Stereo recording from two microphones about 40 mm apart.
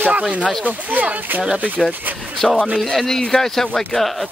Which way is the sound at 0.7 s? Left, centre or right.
Right.